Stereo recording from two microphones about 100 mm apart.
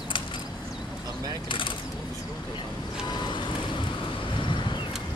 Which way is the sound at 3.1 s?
50° left (ahead or behind).